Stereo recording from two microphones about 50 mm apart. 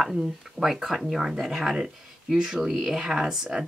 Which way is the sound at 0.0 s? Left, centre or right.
Centre.